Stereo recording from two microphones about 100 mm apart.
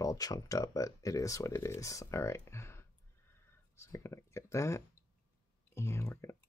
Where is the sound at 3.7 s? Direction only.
25° left (ahead or behind).